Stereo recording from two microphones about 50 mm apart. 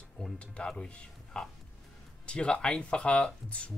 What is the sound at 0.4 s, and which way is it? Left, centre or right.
Speech, left.